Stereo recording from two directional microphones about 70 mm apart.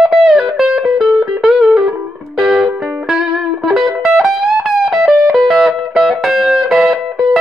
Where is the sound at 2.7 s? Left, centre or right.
Centre.